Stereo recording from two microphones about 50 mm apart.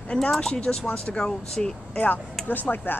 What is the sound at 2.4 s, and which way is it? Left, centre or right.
Speech, left.